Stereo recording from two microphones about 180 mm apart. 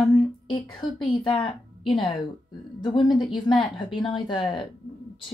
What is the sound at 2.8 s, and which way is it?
Speech, 25° left (ahead or behind).